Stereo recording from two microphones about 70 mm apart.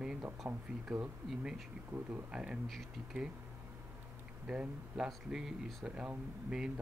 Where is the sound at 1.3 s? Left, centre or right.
Centre.